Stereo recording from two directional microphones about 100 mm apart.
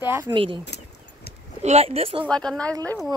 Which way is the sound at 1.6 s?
90° right.